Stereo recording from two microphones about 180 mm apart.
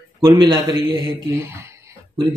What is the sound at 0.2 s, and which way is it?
Speech, 20° right (ahead or behind).